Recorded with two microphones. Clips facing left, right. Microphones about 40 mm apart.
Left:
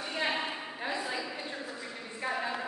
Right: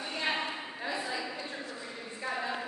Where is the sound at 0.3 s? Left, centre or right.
Centre.